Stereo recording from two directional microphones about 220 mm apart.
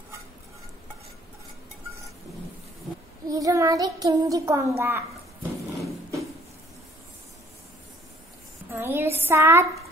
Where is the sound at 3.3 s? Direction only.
15° right (ahead or behind).